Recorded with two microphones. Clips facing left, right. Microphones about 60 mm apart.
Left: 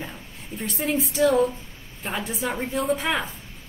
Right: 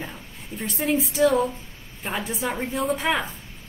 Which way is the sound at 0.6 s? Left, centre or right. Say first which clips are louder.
Right 1 dB; centre.